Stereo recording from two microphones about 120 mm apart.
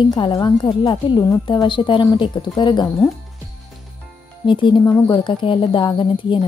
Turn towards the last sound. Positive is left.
turn(degrees=45)  # may be behind; listen again after turning